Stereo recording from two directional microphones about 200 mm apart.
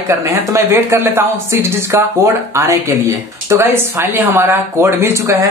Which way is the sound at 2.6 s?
15° right (ahead or behind).